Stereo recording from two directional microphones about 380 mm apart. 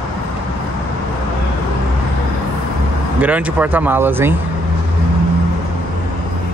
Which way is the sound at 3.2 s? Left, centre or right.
Centre.